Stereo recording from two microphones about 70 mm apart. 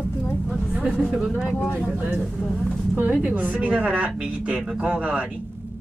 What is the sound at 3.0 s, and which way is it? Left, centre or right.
A woman's voice, right.